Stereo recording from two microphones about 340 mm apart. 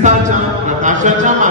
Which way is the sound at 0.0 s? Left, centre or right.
Right.